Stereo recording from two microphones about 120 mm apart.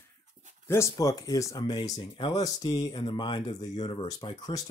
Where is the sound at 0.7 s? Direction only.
25° left (ahead or behind); by 4.4 s 45° left (ahead or behind).